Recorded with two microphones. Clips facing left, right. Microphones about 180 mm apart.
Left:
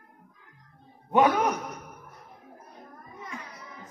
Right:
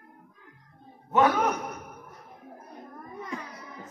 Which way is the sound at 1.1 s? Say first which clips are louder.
Left 1 dB; 15° left (ahead or behind).